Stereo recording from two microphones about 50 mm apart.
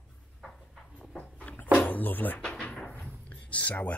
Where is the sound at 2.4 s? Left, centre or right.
Centre.